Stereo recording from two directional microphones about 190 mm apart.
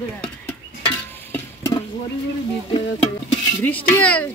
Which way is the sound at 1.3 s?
15° left (ahead or behind).